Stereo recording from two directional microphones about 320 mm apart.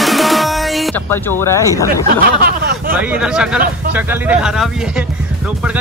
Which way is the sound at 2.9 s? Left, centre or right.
Centre.